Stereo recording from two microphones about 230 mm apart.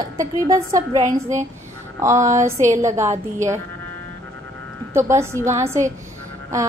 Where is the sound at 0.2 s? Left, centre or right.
Centre.